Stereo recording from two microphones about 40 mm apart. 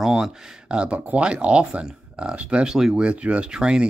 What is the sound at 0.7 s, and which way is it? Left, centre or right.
Speech, right.